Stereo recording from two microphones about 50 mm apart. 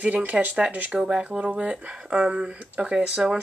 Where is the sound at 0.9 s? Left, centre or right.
Centre.